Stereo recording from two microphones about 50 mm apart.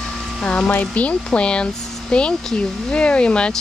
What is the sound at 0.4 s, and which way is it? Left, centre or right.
Speech, left.